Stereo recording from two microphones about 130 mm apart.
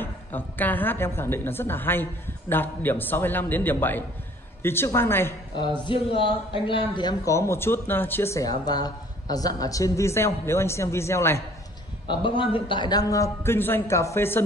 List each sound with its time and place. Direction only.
0.0 s a woman's voice: 15° left (ahead or behind)
5.6 s a man's voice: 40° left (ahead or behind)
7.2 s speech: 20° left (ahead or behind)
12.1 s speech: 40° left (ahead or behind); by 14.4 s 20° left (ahead or behind)